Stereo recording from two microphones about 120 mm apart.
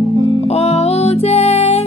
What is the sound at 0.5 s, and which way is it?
Music, 60° left (ahead or behind).